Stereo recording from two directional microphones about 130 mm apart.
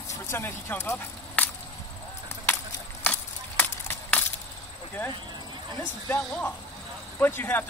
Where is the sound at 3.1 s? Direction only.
20° left (ahead or behind).